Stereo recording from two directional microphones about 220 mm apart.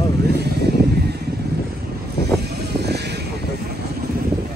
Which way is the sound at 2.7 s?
50° right (ahead or behind).